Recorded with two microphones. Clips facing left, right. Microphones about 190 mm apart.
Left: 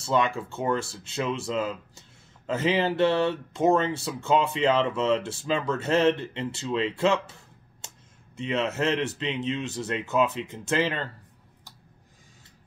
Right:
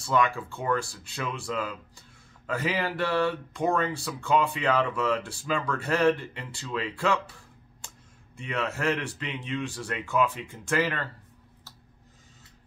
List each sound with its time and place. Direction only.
0.0 s speech: 25° left (ahead or behind)
7.8 s a sound: 25° left (ahead or behind)
8.4 s speech: 20° left (ahead or behind)